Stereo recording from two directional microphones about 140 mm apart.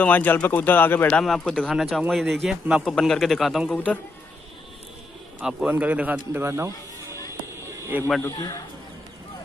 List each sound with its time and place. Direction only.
0.0 s a man's voice: 10° left (ahead or behind)
5.4 s a man's voice: 5° right (ahead or behind)
8.3 s a man's voice: 30° left (ahead or behind)